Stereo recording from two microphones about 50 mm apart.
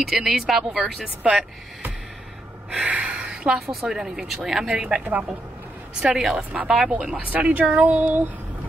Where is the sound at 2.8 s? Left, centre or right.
Right.